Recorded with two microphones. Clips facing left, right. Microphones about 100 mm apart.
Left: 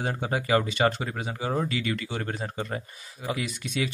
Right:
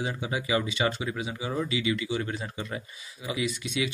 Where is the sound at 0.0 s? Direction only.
50° left (ahead or behind).